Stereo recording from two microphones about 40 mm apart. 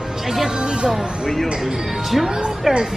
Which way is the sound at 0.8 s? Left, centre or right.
Centre.